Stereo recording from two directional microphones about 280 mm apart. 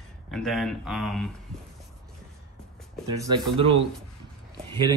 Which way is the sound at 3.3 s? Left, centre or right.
Centre.